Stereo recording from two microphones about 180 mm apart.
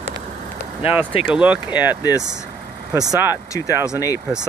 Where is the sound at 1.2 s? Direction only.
5° right (ahead or behind).